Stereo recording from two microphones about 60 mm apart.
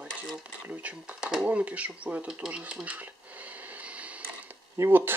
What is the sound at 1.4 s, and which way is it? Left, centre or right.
Speech, right.